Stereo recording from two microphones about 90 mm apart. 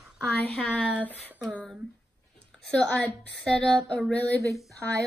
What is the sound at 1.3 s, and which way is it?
Speech, 15° right (ahead or behind).